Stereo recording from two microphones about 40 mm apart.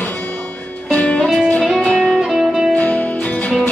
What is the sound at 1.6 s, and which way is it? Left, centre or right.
Music, centre.